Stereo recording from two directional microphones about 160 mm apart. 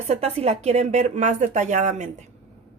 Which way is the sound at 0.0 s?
40° right (ahead or behind).